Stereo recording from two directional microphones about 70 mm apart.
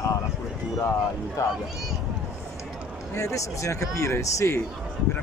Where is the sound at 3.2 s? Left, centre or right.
Left.